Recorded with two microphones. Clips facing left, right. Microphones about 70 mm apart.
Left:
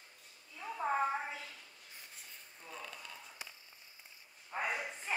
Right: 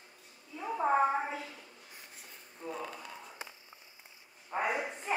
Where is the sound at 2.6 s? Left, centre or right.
Right.